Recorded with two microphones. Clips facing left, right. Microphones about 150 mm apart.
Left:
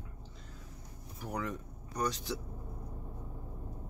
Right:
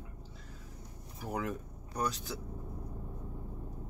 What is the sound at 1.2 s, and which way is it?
Speech, 5° right (ahead or behind).